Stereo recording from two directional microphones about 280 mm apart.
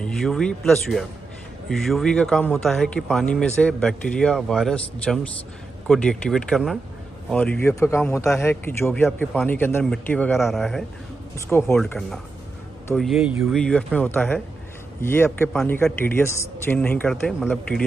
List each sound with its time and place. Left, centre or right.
0.0 s a man's voice: centre